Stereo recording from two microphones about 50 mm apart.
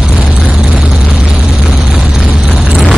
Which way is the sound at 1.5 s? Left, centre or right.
Centre.